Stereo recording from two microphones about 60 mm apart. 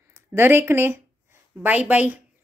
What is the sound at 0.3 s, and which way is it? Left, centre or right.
Speech, right.